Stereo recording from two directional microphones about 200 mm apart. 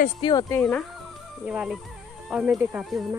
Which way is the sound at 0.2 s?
20° left (ahead or behind).